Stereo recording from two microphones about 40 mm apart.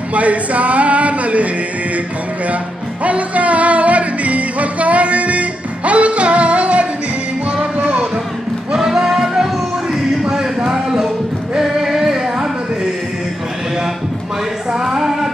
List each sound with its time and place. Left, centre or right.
0.1 s a sound: right
3.0 s music: right
8.7 s music: centre
10.3 s a sound: centre
11.5 s music: centre
14.7 s music: centre